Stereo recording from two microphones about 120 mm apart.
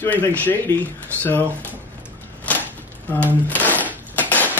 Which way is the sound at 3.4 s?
15° left (ahead or behind).